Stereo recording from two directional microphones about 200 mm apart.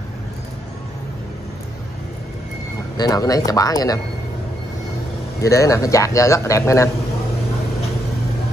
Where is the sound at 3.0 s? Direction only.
15° left (ahead or behind).